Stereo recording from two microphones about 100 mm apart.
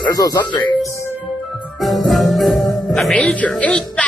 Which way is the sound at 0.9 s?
25° left (ahead or behind).